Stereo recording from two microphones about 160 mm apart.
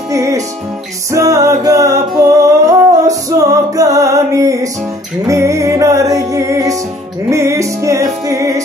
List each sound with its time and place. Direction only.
0.1 s music: 20° right (ahead or behind)